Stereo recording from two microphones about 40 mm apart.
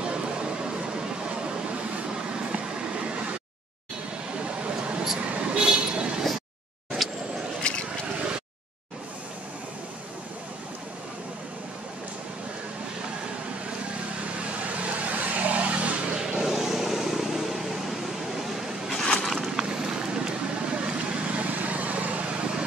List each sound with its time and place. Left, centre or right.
0.0 s a sound: right
1.3 s vehicle: right
2.6 s train: right
4.4 s a sound: right
5.2 s vehicle: right
7.0 s vehicle: centre
7.7 s vehicle: left
14.2 s vehicle: right
16.2 s vehicle: centre
18.3 s a sound: centre
19.2 s vehicle: centre
19.5 s vehicle: centre